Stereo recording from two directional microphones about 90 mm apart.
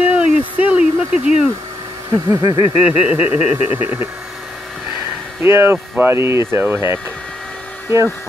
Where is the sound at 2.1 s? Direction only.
40° right (ahead or behind).